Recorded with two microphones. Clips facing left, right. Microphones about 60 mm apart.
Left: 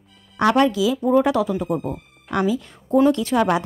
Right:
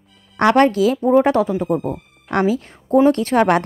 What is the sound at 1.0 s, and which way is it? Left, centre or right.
Speech, right.